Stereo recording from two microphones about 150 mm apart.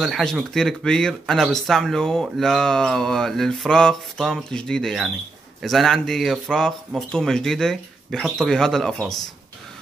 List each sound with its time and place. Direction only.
0.0 s speech: centre (ahead or behind)